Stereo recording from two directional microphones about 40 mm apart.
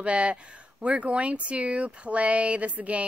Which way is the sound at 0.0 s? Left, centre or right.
Right.